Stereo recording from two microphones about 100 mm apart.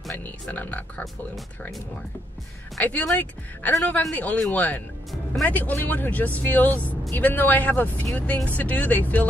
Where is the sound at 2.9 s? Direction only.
15° left (ahead or behind).